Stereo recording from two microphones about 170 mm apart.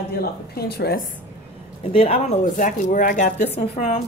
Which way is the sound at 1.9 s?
35° left (ahead or behind).